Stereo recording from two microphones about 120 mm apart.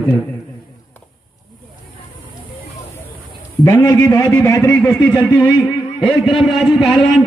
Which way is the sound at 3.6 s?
30° left (ahead or behind).